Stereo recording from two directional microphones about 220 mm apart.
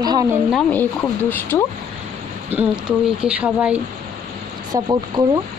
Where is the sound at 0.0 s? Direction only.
15° right (ahead or behind).